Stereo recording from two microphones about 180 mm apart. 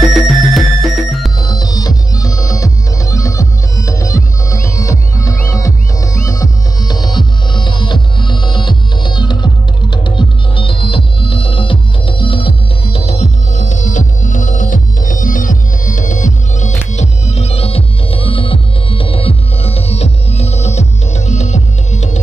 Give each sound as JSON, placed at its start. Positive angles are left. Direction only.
{"t": 0.0, "sound": "music", "side_deg": 0}
{"t": 1.4, "sound": "music", "side_deg": 20}